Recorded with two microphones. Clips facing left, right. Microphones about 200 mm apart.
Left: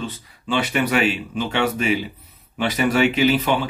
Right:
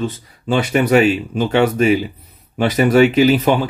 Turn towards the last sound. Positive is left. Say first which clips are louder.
# right 5 dB
turn(degrees=-40)  # may be behind; listen again after turning